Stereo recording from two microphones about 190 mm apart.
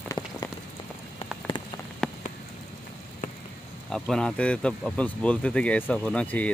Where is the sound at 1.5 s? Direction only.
25° left (ahead or behind).